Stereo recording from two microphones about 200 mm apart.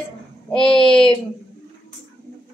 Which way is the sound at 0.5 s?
5° left (ahead or behind).